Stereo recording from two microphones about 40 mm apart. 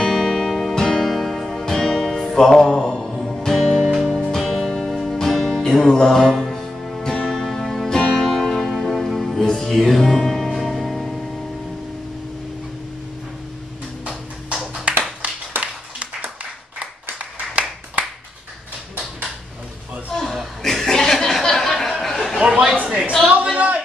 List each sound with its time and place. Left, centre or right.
0.0 s music: centre
3.0 s music: centre
5.6 s music: centre
7.0 s music: centre
7.2 s music: centre
14.0 s a sound: centre
20.2 s chuckle: centre
22.5 s a sound: centre
23.2 s a sound: right